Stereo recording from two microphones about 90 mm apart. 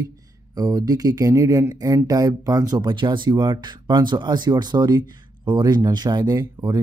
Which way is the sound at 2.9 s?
65° right (ahead or behind).